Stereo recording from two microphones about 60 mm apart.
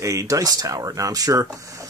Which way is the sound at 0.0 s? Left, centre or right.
Right.